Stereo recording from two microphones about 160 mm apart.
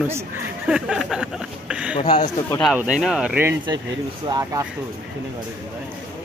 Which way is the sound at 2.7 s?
5° right (ahead or behind).